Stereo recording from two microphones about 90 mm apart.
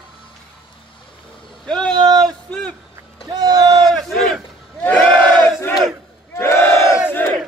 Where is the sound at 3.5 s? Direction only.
45° right (ahead or behind).